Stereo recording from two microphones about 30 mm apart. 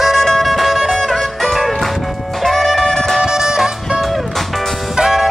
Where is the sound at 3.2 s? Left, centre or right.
Centre.